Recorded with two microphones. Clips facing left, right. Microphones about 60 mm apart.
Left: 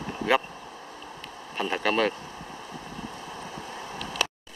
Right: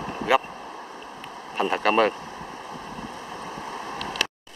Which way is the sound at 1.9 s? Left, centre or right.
Centre.